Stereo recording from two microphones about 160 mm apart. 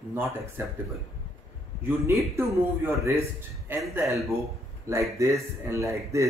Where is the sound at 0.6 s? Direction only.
15° right (ahead or behind).